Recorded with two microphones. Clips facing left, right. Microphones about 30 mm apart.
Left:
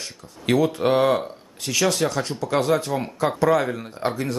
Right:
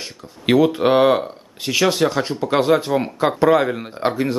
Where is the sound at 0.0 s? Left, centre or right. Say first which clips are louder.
Right 5 dB; right.